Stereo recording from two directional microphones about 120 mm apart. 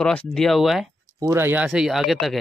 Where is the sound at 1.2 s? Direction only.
20° right (ahead or behind); by 2.4 s centre (ahead or behind).